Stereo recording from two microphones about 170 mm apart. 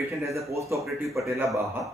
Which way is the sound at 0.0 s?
15° right (ahead or behind).